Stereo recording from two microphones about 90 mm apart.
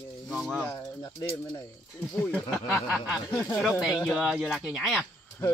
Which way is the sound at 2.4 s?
5° right (ahead or behind).